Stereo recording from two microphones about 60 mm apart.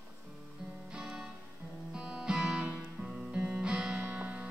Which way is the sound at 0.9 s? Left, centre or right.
Centre.